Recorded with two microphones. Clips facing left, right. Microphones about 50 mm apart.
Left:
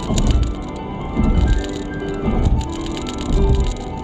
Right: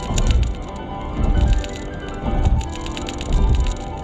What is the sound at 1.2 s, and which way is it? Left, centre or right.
Music, left.